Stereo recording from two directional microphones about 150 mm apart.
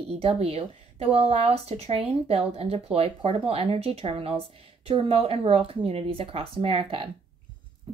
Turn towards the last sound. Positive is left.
turn(degrees=-40)  # may be behind; listen again after turning